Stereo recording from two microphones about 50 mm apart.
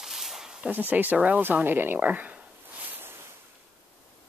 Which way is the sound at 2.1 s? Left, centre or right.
Right.